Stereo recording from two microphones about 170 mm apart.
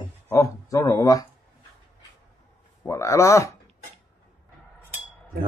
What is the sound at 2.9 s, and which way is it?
Speech, 15° left (ahead or behind).